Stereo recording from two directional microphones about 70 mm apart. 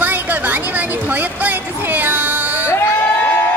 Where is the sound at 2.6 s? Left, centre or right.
Left.